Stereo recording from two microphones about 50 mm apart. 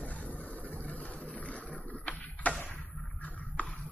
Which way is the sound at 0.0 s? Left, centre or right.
Left.